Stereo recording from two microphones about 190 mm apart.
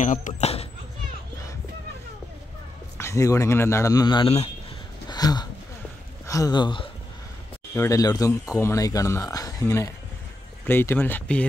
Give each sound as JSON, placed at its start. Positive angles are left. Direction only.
{"t": 0.0, "sound": "speech", "side_deg": 40}
{"t": 3.0, "sound": "speech", "side_deg": 15}